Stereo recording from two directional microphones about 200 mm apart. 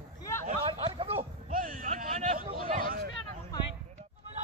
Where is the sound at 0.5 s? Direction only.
30° right (ahead or behind).